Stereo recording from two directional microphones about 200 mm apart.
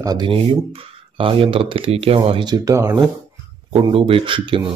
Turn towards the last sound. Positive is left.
turn(degrees=-25)  # may be behind; listen again after turning